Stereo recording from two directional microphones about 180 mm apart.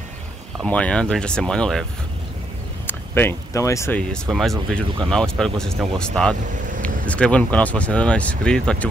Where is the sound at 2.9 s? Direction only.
10° left (ahead or behind).